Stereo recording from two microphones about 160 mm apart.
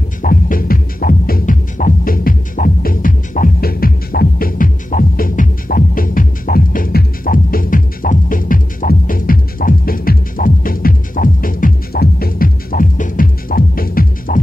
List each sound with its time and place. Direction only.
0.2 s music: 60° left (ahead or behind)